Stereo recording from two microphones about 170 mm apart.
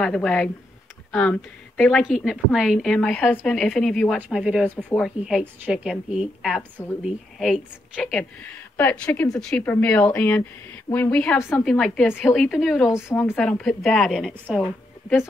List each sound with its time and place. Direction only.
0.0 s a woman's voice: 5° left (ahead or behind)
12.9 s a woman's voice: 15° left (ahead or behind)
13.4 s a woman's voice: 5° left (ahead or behind)